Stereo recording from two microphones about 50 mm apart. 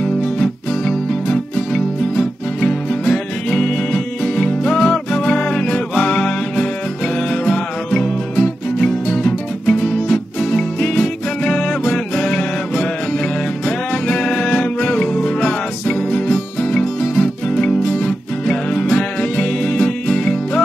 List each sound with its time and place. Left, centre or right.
0.4 s music: centre